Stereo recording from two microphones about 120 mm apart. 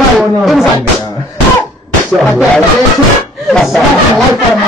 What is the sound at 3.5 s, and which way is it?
Speech, centre (ahead or behind).